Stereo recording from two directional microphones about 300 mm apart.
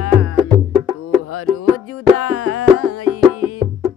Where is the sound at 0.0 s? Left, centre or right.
Left.